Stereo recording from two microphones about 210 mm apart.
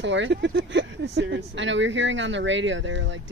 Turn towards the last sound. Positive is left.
turn(degrees=-60)  # may be behind; listen again after turning